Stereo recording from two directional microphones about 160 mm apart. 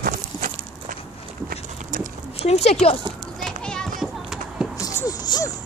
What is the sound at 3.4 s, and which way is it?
Children playing, 5° left (ahead or behind).